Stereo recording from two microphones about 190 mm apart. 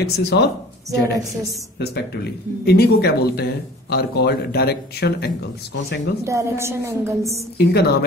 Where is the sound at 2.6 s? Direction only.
55° left (ahead or behind).